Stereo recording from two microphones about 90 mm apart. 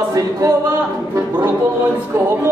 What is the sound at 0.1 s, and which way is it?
Speech, 35° right (ahead or behind).